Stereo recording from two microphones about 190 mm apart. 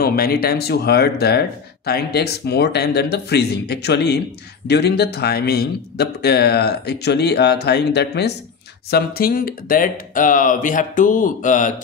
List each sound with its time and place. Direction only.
0.0 s a man's voice: 55° left (ahead or behind)
8.9 s speech: 50° left (ahead or behind)